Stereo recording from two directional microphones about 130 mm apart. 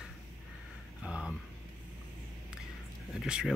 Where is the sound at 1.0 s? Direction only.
10° right (ahead or behind).